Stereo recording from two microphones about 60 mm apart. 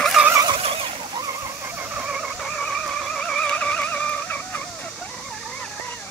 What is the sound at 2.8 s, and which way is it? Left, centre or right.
Music, centre.